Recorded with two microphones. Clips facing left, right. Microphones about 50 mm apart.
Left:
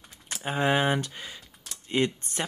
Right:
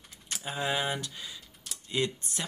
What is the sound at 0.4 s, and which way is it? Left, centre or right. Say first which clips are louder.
Speech: left 7 dB; left.